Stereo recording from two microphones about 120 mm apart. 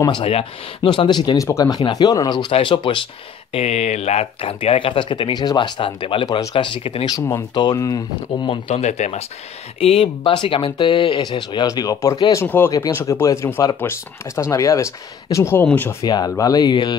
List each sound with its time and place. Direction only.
0.2 s speech: 50° left (ahead or behind); by 2.4 s 35° left (ahead or behind)
2.5 s speech: 45° left (ahead or behind)
3.5 s speech: 65° left (ahead or behind); by 6.2 s 45° left (ahead or behind)
6.2 s speech: 35° left (ahead or behind)
6.5 s speech: 45° left (ahead or behind)
7.1 s speech: 30° left (ahead or behind)
8.5 s speech: 55° left (ahead or behind)
9.8 s speech: 55° left (ahead or behind); by 15.6 s 25° left (ahead or behind)
15.6 s speech: 15° left (ahead or behind)
16.0 s speech: 35° left (ahead or behind)